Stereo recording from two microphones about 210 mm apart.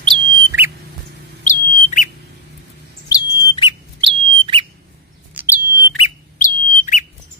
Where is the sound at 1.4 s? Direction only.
40° left (ahead or behind).